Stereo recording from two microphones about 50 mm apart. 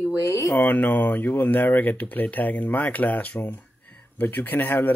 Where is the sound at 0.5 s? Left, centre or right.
Left.